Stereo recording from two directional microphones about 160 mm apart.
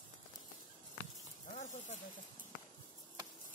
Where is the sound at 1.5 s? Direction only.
50° left (ahead or behind).